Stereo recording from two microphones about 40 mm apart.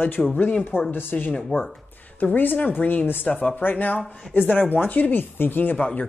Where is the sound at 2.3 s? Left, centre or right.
Left.